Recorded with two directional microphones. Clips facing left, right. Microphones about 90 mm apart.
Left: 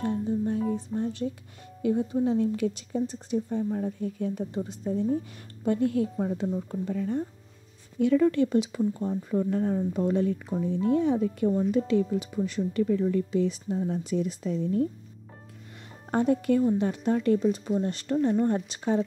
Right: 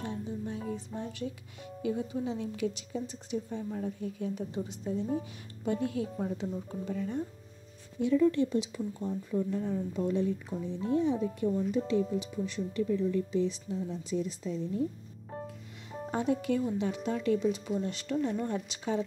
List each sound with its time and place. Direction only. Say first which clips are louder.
0.0 s music: left 9 dB; 45° left (ahead or behind)
1.8 s speech: left 7 dB; 45° left (ahead or behind)
8.0 s speech: left 4 dB; 70° left (ahead or behind)
16.1 s speech: left 6 dB; 50° left (ahead or behind)